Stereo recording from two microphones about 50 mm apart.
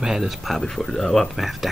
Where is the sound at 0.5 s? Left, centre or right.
Centre.